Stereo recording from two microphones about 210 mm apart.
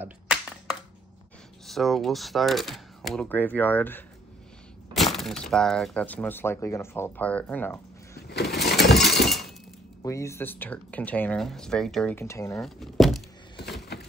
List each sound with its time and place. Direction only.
0.0 s a sound: 5° right (ahead or behind)
1.7 s speech: centre (ahead or behind)
8.3 s lawn mower: 50° left (ahead or behind)
9.2 s glass: centre (ahead or behind)
10.0 s speech: 15° left (ahead or behind)
12.5 s speech: centre (ahead or behind)
13.7 s a sound: 50° left (ahead or behind)